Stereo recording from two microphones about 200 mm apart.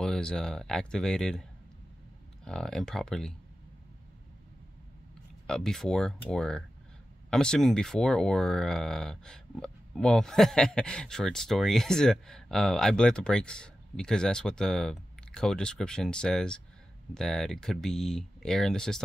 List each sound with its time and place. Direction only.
0.0 s speech: 5° left (ahead or behind)
2.4 s speech: 5° left (ahead or behind)
5.5 s speech: 5° left (ahead or behind)